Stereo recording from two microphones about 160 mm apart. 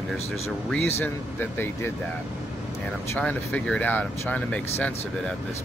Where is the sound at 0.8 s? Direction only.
15° left (ahead or behind).